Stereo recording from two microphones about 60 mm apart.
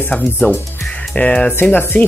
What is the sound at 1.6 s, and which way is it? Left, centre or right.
Music, left.